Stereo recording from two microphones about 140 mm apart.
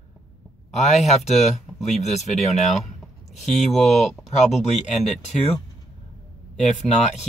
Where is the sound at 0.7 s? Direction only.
55° left (ahead or behind).